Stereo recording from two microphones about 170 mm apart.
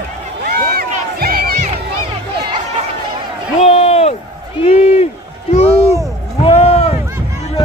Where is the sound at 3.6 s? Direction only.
35° left (ahead or behind).